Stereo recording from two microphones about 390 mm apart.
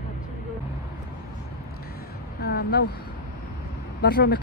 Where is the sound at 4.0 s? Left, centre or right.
Left.